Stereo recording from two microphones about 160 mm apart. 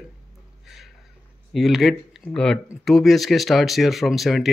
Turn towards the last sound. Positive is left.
turn(degrees=0)  # may be behind; listen again after turning